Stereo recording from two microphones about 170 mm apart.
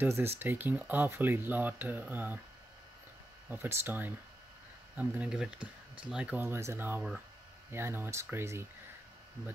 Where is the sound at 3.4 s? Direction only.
15° right (ahead or behind).